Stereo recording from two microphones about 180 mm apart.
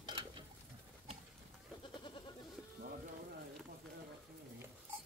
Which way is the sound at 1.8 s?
25° left (ahead or behind).